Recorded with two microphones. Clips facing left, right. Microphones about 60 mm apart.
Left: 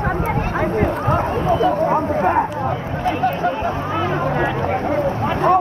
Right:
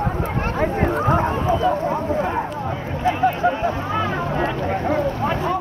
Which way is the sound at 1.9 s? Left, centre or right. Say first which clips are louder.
Left 4 dB; left.